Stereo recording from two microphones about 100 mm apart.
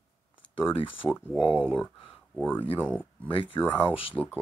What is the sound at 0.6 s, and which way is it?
Speech, 65° left (ahead or behind).